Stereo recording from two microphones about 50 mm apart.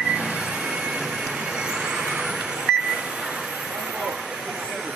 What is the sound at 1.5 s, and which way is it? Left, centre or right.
Vehicle, centre.